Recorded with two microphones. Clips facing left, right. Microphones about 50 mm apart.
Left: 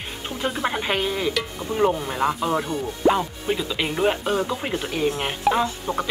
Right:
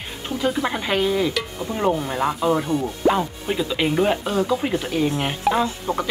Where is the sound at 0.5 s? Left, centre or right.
Centre.